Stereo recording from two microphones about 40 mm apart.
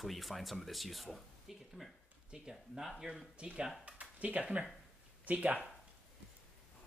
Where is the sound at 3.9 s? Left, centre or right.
Right.